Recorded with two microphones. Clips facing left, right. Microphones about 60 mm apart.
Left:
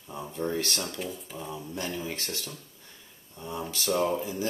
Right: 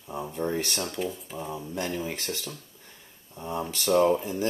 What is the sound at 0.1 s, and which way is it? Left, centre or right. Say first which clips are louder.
Speech: right 2 dB; centre.